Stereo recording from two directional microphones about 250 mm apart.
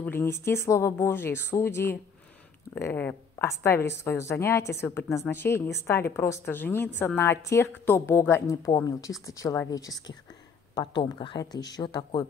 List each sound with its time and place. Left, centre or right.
0.0 s a woman's voice: centre